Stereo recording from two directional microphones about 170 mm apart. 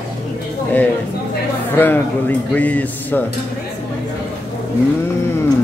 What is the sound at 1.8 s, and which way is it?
Speech, 10° left (ahead or behind).